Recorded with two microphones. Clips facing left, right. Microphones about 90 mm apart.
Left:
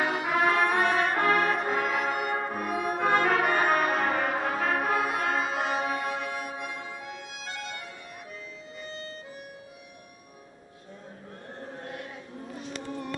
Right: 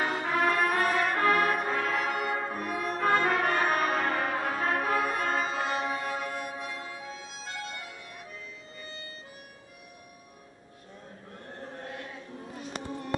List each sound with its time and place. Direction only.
0.0 s music: 10° left (ahead or behind)
1.7 s brass instrument: 15° left (ahead or behind)
2.1 s music: 10° left (ahead or behind)
3.3 s brass instrument: 10° left (ahead or behind)
6.3 s music: 5° left (ahead or behind)